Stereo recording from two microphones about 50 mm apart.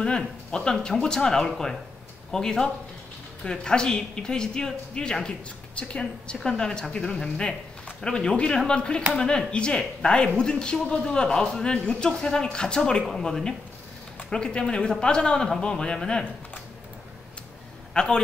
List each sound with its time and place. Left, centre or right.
0.0 s speech: centre
17.9 s speech: centre